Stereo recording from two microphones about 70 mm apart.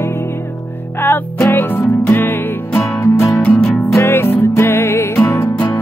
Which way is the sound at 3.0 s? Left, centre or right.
Left.